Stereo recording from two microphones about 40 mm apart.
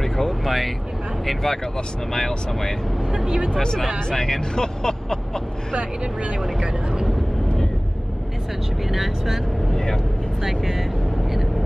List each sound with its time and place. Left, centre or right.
0.0 s vehicle: centre
1.2 s speech: centre
3.1 s speech: centre
4.1 s speech: centre
8.8 s speech: centre
10.4 s speech: centre